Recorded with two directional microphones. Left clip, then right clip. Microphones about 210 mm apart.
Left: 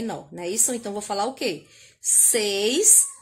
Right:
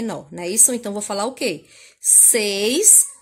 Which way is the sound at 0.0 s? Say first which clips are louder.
Right 3 dB; 30° right (ahead or behind).